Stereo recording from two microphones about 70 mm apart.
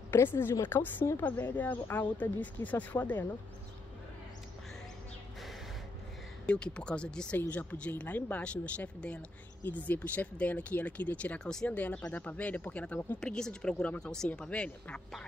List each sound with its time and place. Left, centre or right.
0.1 s a woman's voice: left
1.2 s speech: left
6.4 s speech: centre
13.2 s speech: centre